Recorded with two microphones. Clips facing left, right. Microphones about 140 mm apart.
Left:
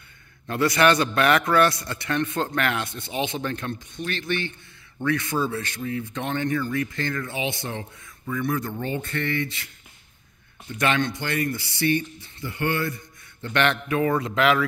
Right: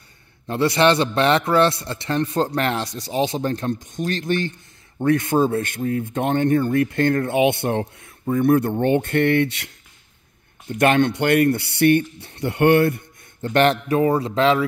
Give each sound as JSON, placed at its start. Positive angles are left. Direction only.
{"t": 0.5, "sound": "a man's voice", "side_deg": -25}
{"t": 10.7, "sound": "speech", "side_deg": -50}
{"t": 13.4, "sound": "a man's voice", "side_deg": -40}